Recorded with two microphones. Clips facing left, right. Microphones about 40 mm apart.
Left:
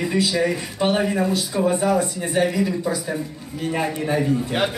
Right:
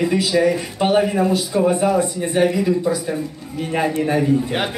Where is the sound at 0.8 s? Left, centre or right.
Centre.